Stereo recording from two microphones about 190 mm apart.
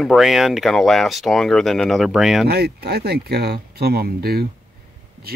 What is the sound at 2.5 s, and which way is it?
Speech, 55° right (ahead or behind).